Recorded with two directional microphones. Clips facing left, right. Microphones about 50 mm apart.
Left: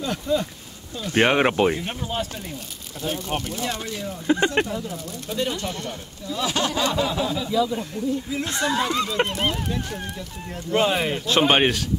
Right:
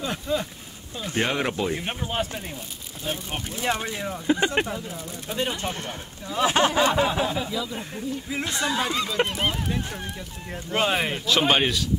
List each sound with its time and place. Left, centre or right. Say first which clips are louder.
0.0 s speech: left 3 dB; centre
1.1 s speech: left 7 dB; left
1.8 s speech: even; right
3.0 s speech: left 3 dB; centre
3.4 s speech: right 2 dB; centre
7.5 s speech: left 8 dB; centre
7.9 s speech: left 4 dB; right
9.0 s speech: left 1 dB; centre
10.5 s speech: left 3 dB; centre
11.2 s speech: left 3 dB; left